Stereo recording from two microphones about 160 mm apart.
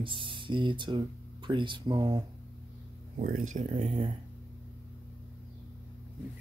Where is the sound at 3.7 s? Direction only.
35° right (ahead or behind).